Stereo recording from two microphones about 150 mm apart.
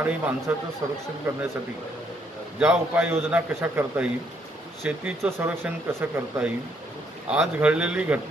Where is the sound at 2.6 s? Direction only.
10° right (ahead or behind).